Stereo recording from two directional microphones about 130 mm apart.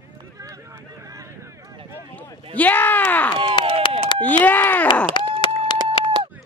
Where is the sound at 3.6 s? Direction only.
35° left (ahead or behind).